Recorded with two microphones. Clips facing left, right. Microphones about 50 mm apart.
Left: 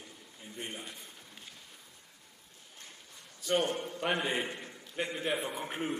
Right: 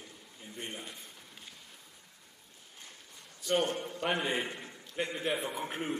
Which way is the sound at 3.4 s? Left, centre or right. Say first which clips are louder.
Even; centre.